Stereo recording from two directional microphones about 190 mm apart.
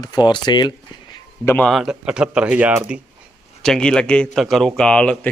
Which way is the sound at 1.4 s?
10° left (ahead or behind).